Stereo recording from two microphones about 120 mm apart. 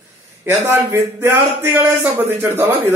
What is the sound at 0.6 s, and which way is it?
Speech, 20° right (ahead or behind).